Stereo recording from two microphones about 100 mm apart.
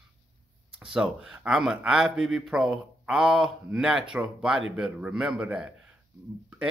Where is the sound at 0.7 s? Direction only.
5° right (ahead or behind).